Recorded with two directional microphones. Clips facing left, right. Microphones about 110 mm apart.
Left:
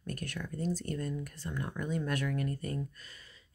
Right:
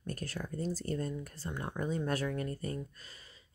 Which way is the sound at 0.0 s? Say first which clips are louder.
Even; 35° right (ahead or behind).